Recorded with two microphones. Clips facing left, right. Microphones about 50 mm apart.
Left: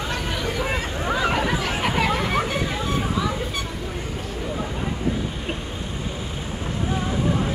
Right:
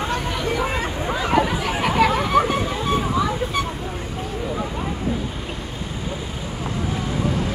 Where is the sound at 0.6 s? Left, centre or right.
Centre.